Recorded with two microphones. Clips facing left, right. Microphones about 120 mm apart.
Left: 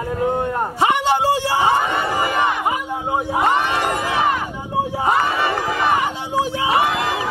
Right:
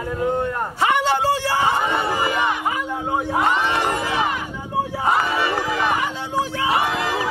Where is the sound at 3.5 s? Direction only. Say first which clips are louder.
Left 1 dB; 55° left (ahead or behind).